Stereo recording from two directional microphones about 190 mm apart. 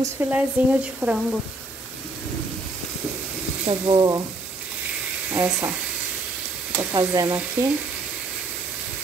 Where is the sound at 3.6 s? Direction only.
25° right (ahead or behind).